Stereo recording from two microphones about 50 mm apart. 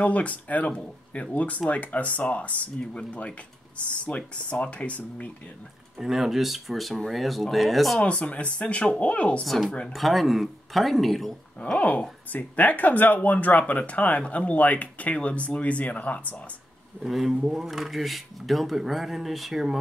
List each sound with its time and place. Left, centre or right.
0.0 s speech: left
2.8 s speech: centre
5.9 s speech: centre
8.0 s speech: left
9.9 s speech: centre
11.8 s speech: left
17.0 s speech: centre